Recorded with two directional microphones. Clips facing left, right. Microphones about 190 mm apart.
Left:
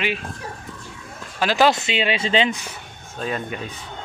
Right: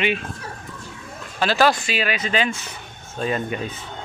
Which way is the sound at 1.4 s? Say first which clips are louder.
Left 1 dB; 15° left (ahead or behind).